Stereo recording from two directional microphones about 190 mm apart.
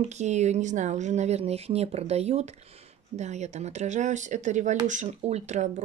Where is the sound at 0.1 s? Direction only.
35° right (ahead or behind).